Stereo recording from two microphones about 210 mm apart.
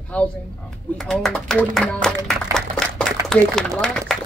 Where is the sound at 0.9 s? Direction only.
Centre (ahead or behind).